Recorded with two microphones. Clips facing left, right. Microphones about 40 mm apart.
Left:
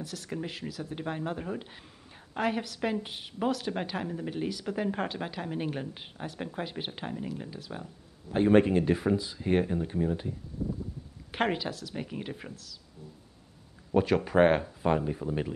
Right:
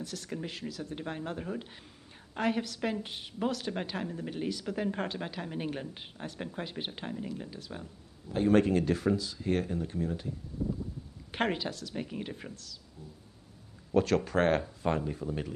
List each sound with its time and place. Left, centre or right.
0.0 s a woman's voice: centre
8.3 s speech: left
11.3 s a woman's voice: centre
13.9 s speech: centre